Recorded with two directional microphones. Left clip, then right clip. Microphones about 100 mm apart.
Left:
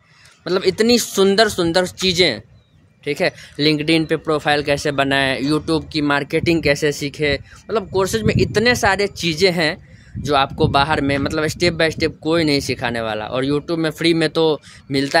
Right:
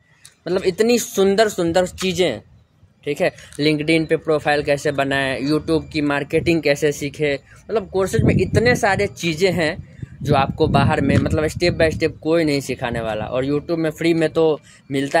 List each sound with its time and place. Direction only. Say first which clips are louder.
0.4 s speech: left 1 dB; 30° left (ahead or behind)